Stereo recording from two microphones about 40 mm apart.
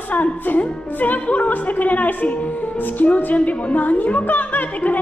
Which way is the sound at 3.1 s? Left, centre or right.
Left.